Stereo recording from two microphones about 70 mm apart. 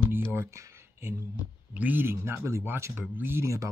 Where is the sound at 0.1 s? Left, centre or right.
Right.